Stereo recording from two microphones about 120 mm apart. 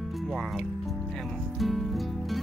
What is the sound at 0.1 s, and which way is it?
Music, centre (ahead or behind).